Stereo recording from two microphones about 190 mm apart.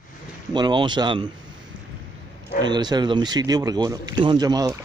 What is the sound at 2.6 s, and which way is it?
Speech, 20° right (ahead or behind).